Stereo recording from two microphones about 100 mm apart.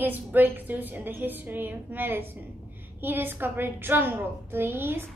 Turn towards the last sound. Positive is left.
turn(degrees=-25)  # may be behind; listen again after turning